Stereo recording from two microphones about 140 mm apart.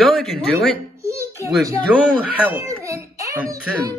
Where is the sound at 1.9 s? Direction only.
10° right (ahead or behind).